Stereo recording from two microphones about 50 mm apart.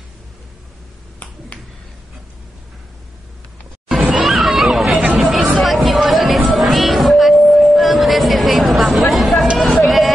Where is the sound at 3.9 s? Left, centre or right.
Centre.